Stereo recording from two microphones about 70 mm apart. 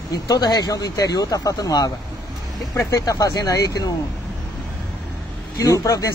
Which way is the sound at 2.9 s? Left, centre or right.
Left.